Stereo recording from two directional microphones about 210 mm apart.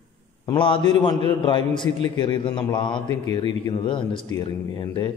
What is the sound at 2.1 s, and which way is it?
A man's voice, 20° left (ahead or behind).